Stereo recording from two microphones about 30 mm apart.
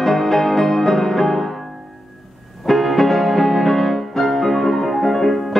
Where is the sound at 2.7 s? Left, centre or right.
Centre.